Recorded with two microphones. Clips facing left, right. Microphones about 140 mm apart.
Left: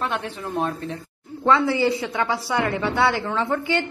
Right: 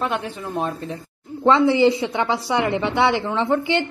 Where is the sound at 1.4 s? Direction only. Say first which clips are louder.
Right 4 dB; 20° right (ahead or behind).